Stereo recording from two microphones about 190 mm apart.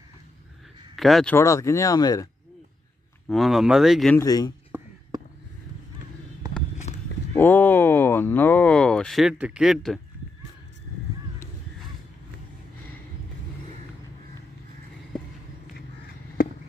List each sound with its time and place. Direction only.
0.9 s speech: centre (ahead or behind)
1.3 s speech: 15° left (ahead or behind)
3.3 s speech: centre (ahead or behind)
4.1 s speech: 20° left (ahead or behind)
5.1 s fireworks: 20° right (ahead or behind)
6.9 s walk: 35° left (ahead or behind)
7.3 s speech: 10° left (ahead or behind)